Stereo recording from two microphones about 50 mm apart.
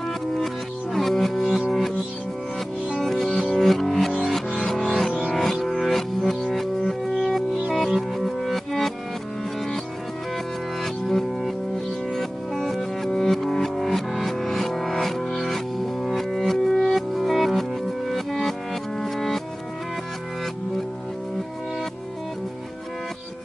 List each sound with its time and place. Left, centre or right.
0.9 s music: centre
3.0 s music: centre
10.8 s music: centre